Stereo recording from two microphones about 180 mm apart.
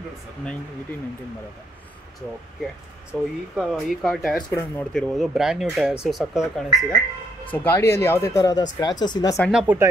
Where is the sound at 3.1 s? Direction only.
5° right (ahead or behind).